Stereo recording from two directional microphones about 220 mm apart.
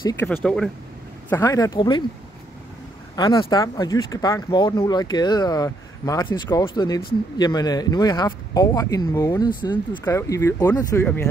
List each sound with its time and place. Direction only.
0.0 s speech: 10° left (ahead or behind)
1.3 s speech: 15° left (ahead or behind)
3.2 s speech: 20° left (ahead or behind)